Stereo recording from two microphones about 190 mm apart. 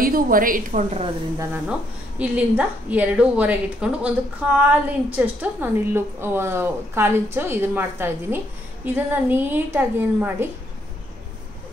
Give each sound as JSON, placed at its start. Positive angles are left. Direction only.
{"t": 0.0, "sound": "a woman's voice", "side_deg": -50}
{"t": 1.7, "sound": "a woman's voice", "side_deg": -5}